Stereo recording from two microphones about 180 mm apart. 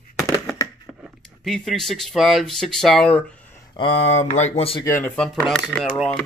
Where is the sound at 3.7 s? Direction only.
30° left (ahead or behind).